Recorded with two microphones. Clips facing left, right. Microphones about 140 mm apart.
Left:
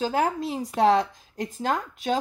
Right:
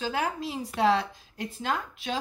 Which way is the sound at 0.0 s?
40° left (ahead or behind).